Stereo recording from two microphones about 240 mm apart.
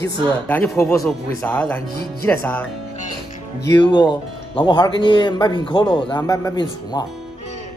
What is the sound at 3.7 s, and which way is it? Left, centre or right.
Speech, centre.